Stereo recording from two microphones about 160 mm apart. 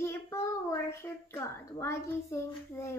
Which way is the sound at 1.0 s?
15° left (ahead or behind).